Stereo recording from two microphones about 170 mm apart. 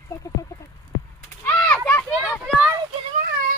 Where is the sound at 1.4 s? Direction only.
5° left (ahead or behind).